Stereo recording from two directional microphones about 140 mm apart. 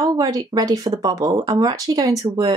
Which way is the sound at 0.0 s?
25° right (ahead or behind).